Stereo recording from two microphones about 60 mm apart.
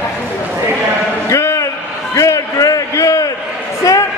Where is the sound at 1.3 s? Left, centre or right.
Left.